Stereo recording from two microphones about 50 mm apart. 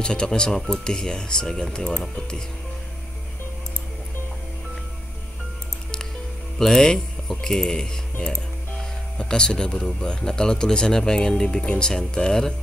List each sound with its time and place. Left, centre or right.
0.0 s speech: centre
6.6 s speech: centre